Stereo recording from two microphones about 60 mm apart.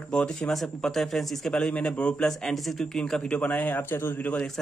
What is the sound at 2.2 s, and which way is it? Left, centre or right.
A man's voice, centre.